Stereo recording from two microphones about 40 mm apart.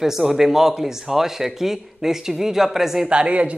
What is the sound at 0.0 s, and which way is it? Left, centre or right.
Speech, centre.